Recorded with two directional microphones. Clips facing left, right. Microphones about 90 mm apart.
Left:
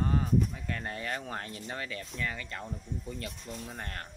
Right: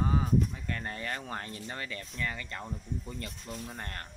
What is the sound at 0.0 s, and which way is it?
Speech, 5° right (ahead or behind).